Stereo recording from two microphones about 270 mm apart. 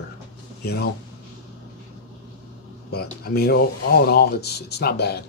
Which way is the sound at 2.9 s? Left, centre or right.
Left.